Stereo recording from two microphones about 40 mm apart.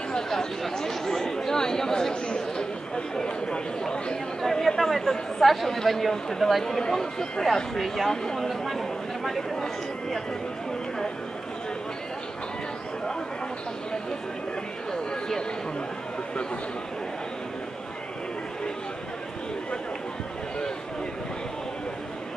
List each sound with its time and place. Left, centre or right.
0.3 s chatter: centre
3.2 s speech: left
4.4 s speech: centre
8.1 s speech: centre
14.9 s a sound: centre